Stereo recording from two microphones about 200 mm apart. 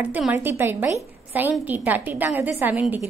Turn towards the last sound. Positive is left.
turn(degrees=-10)  # may be behind; listen again after turning